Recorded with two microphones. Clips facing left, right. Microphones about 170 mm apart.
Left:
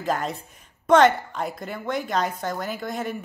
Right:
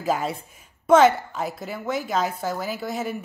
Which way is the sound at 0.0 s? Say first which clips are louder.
Right 1 dB; 5° right (ahead or behind).